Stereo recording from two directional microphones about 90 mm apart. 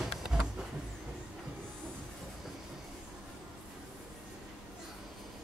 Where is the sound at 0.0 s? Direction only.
5° right (ahead or behind).